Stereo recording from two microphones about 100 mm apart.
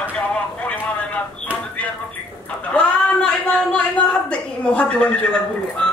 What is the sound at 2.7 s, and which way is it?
Speech, 10° left (ahead or behind).